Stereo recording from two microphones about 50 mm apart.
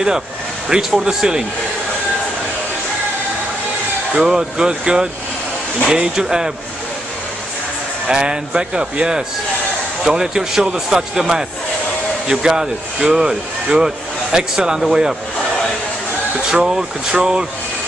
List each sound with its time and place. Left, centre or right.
0.7 s speech: centre
4.1 s speech: centre
8.1 s speech: centre
16.5 s speech: centre